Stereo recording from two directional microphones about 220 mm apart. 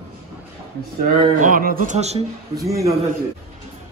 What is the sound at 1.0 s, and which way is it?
Speech, 40° right (ahead or behind).